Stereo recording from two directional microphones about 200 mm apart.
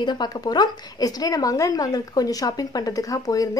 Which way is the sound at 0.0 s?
20° left (ahead or behind).